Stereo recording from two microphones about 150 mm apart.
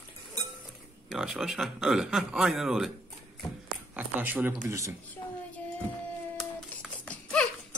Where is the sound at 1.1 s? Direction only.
Centre (ahead or behind).